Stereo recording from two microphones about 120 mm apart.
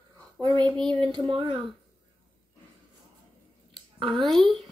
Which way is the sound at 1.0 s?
45° right (ahead or behind).